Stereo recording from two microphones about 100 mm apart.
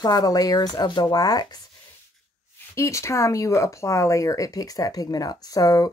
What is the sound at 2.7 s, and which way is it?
Speech, 30° left (ahead or behind).